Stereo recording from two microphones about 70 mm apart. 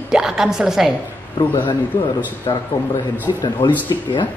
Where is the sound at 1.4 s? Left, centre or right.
Left.